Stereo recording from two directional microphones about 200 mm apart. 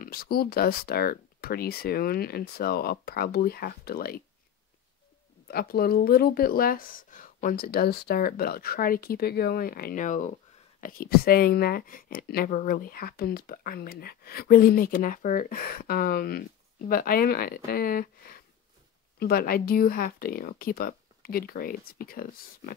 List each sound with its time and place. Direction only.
0.0 s speech: 50° left (ahead or behind)
5.5 s speech: 50° left (ahead or behind)